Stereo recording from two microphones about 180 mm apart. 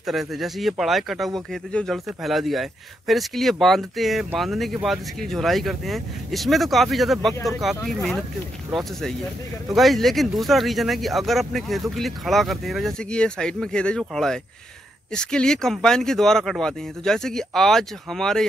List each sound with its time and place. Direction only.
0.0 s speech: centre (ahead or behind)